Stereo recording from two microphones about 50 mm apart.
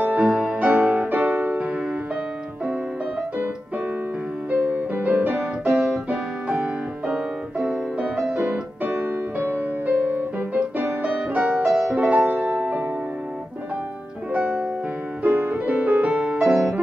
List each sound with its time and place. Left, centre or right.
0.0 s music: right
4.5 s music: right
5.9 s piano: right
8.3 s music: right
9.4 s music: right
14.3 s music: right
15.2 s music: right